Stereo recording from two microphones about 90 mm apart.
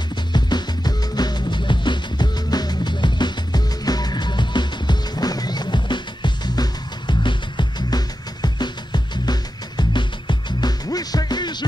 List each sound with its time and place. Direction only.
0.3 s music: 55° left (ahead or behind)